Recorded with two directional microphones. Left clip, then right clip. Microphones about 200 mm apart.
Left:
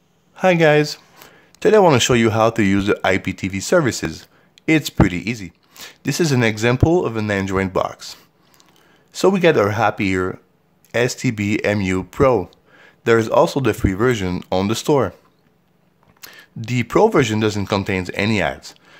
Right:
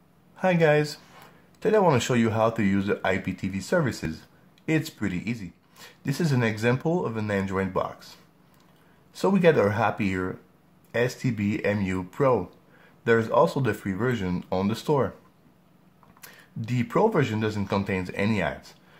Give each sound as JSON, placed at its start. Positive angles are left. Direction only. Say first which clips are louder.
{"t": 0.4, "sound": "speech", "louder": "left 8 dB", "side_deg": 40}
{"t": 16.2, "sound": "speech", "louder": "left 6 dB", "side_deg": 40}